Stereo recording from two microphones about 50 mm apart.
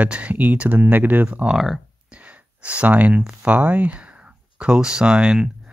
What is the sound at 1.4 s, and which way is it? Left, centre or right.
Speech, centre.